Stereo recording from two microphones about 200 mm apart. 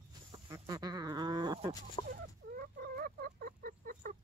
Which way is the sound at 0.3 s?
20° right (ahead or behind).